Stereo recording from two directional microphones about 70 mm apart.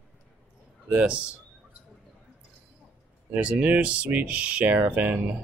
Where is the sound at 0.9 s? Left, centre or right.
Centre.